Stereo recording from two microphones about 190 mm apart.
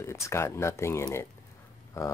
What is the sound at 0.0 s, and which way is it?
Speech, 15° left (ahead or behind).